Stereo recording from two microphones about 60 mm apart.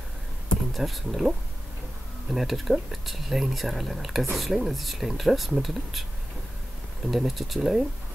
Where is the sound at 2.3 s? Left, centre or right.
Centre.